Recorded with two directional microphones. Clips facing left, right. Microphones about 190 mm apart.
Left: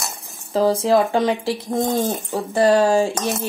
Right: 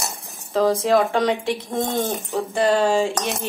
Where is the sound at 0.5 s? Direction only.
30° left (ahead or behind).